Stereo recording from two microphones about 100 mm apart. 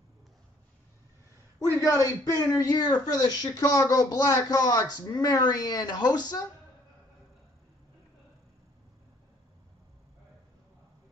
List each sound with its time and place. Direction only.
1.9 s speech: 35° left (ahead or behind)